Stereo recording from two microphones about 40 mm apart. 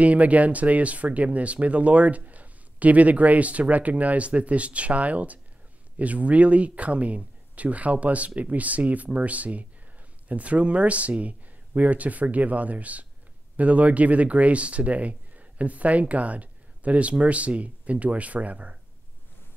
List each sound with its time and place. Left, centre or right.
0.0 s speech: right